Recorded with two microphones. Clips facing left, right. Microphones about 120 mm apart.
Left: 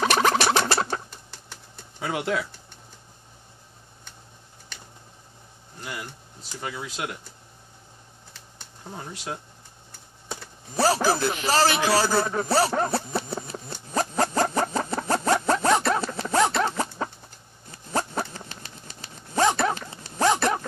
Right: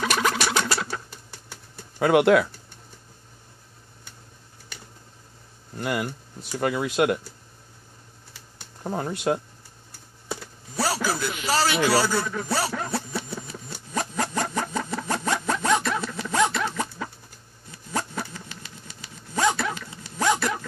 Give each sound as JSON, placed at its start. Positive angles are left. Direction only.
{"t": 0.0, "sound": "a sound", "side_deg": 35}
{"t": 2.0, "sound": "speech", "side_deg": -65}
{"t": 5.8, "sound": "speech", "side_deg": -65}
{"t": 8.8, "sound": "speech", "side_deg": -55}
{"t": 10.8, "sound": "a sound", "side_deg": 40}
{"t": 17.6, "sound": "vehicle", "side_deg": 35}